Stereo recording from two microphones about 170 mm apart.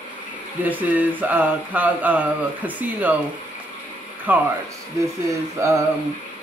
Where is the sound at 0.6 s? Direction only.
10° right (ahead or behind).